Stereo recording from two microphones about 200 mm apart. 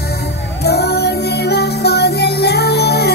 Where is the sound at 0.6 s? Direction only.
55° left (ahead or behind).